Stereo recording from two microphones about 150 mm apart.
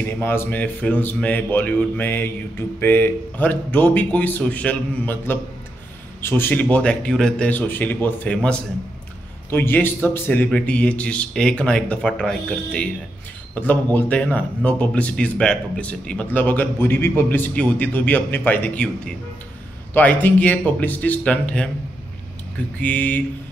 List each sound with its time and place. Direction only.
0.0 s speech: 15° left (ahead or behind)
22.8 s speech: 10° left (ahead or behind)